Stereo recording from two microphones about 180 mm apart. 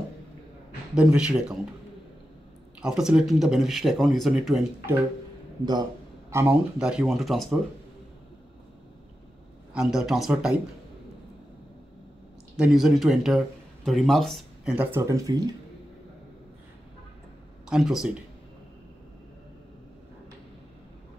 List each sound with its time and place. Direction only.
0.9 s speech: 5° right (ahead or behind)
2.8 s speech: 5° right (ahead or behind)
6.3 s speech: 10° right (ahead or behind)
9.8 s speech: centre (ahead or behind)
12.5 s speech: 5° right (ahead or behind)
15.0 s speech: 20° right (ahead or behind)
17.6 s speech: centre (ahead or behind)